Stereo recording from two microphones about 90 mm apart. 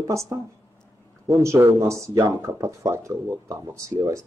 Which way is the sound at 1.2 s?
35° right (ahead or behind).